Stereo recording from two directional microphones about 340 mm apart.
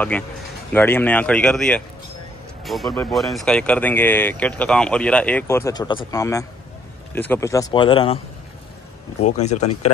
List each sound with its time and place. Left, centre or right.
0.7 s speech: centre
9.2 s speech: centre